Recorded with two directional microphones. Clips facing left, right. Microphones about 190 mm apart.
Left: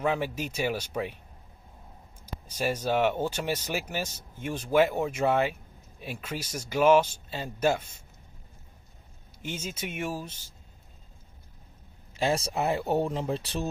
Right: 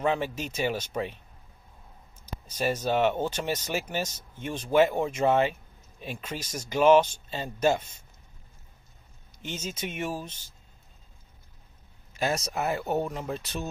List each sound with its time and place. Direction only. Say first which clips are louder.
0.0 s speech: right 1 dB; 10° left (ahead or behind)
2.2 s speech: right 1 dB; 10° left (ahead or behind)
9.4 s speech: right 1 dB; 10° left (ahead or behind)
12.2 s speech: left 2 dB; 30° left (ahead or behind)